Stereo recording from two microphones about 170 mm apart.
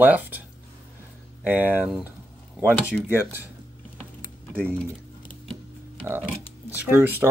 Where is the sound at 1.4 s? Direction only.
10° right (ahead or behind).